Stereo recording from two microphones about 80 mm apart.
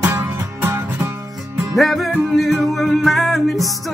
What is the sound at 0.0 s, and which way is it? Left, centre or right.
Music, right.